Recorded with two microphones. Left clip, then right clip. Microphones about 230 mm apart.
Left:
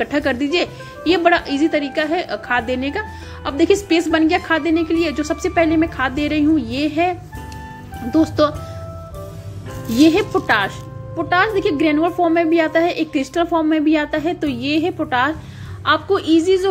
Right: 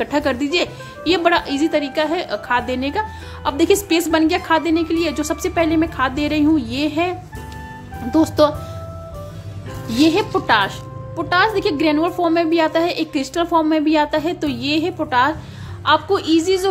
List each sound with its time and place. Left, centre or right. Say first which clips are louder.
0.0 s speech: even; centre
9.8 s speech: left 2 dB; centre